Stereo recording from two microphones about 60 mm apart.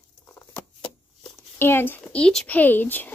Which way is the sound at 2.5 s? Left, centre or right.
Left.